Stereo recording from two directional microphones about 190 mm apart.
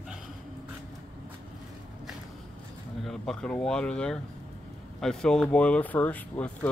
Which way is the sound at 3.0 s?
Centre (ahead or behind).